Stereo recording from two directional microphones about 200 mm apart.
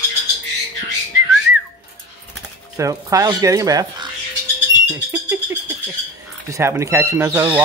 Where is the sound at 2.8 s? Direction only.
15° right (ahead or behind).